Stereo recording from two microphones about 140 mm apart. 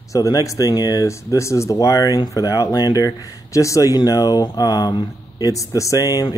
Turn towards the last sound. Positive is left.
turn(degrees=25)  # may be behind; listen again after turning